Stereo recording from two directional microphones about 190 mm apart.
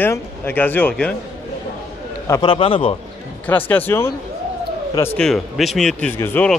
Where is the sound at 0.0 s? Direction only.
10° left (ahead or behind).